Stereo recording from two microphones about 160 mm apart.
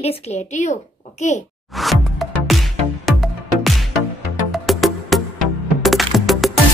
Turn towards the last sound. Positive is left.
turn(degrees=0)  # may be behind; listen again after turning